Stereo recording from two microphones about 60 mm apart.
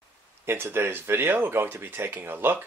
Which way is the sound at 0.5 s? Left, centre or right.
Right.